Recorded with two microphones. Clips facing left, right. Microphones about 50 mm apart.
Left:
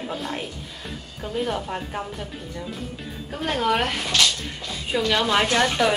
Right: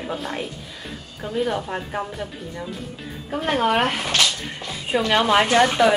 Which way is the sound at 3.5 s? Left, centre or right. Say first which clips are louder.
Right 3 dB; right.